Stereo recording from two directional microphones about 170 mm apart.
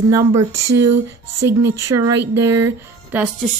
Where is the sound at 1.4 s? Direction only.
15° right (ahead or behind).